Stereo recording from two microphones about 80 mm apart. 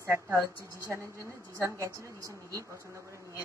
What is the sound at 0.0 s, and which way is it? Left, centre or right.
Speech, right.